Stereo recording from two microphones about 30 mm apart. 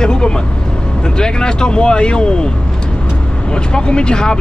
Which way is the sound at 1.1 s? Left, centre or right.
Left.